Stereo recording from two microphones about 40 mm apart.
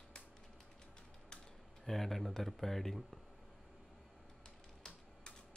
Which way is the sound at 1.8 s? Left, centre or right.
Centre.